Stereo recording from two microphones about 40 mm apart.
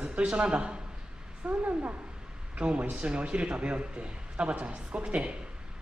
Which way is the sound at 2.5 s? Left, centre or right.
Right.